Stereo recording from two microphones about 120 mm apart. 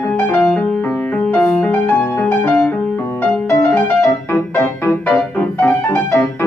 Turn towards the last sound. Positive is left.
turn(degrees=15)  # may be behind; listen again after turning